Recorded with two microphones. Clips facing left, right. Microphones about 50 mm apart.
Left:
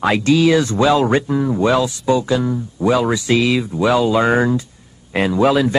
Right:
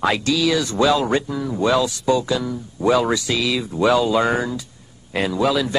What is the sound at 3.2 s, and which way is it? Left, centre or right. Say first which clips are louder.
Speech: left 6 dB; left.